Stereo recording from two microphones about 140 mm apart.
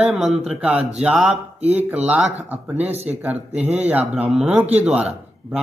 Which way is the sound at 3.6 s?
50° right (ahead or behind).